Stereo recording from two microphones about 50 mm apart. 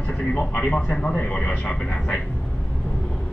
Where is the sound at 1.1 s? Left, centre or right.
Left.